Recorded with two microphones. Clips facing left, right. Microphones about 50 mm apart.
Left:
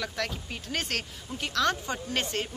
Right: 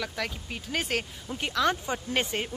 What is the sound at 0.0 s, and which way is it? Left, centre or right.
Speech, centre.